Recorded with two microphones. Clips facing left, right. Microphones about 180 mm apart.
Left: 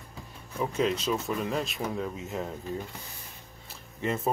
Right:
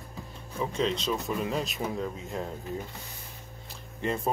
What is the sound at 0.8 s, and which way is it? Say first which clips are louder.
Speech: left 1 dB; 5° left (ahead or behind).